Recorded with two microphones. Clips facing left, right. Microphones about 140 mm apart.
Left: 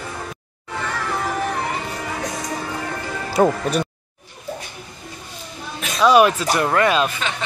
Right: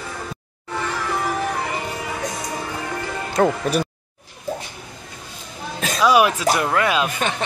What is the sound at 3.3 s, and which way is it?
Speech, 5° left (ahead or behind).